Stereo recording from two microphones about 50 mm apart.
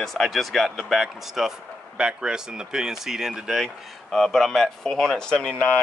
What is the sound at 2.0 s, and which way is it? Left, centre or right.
Speech, centre.